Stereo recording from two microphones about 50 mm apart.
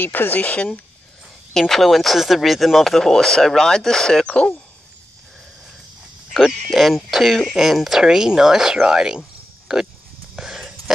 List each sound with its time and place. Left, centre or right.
0.0 s speech: left
1.5 s speech: centre
6.3 s speech: centre
10.3 s a sound: centre